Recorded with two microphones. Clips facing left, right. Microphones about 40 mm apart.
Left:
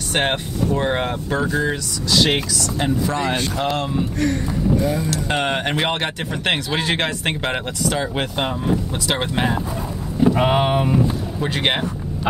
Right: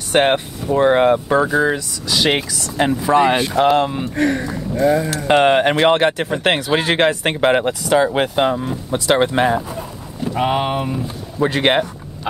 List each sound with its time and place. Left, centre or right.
0.1 s speech: centre; by 4.5 s right
4.8 s speech: centre
5.1 s speech: centre
10.3 s speech: centre
11.4 s speech: centre